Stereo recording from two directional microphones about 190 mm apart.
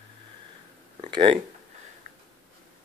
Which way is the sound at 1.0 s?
25° right (ahead or behind).